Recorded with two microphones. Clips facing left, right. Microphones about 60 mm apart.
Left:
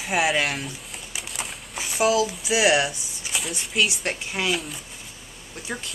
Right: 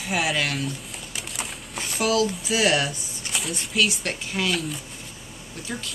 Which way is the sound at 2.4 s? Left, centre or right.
Centre.